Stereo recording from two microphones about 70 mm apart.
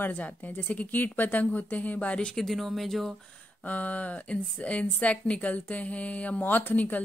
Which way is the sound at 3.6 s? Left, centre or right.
Left.